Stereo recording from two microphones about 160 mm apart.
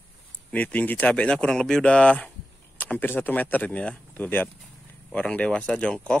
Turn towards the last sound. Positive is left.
turn(degrees=5)  # may be behind; listen again after turning